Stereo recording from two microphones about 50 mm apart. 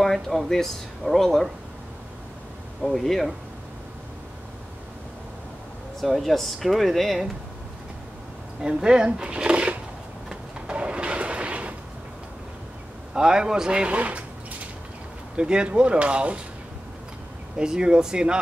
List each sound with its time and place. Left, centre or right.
0.0 s a sound: centre
0.5 s speech: centre
2.8 s speech: centre
5.9 s speech: centre
8.5 s speech: centre
10.3 s train: right
13.1 s speech: centre
15.3 s speech: centre
17.6 s speech: centre